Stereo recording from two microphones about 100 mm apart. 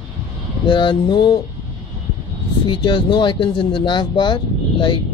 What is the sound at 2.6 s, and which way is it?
Speech, 55° left (ahead or behind).